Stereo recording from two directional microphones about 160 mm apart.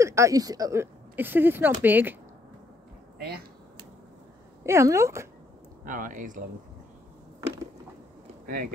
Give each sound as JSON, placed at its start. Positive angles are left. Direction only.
{"t": 0.0, "sound": "speech", "side_deg": -20}
{"t": 4.6, "sound": "speech", "side_deg": -20}
{"t": 5.9, "sound": "speech", "side_deg": -55}
{"t": 7.3, "sound": "a sound", "side_deg": -20}